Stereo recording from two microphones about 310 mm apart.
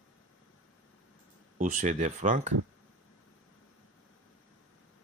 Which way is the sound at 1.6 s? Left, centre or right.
Right.